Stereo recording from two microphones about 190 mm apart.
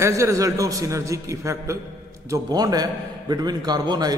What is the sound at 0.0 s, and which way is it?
A man's voice, 15° right (ahead or behind).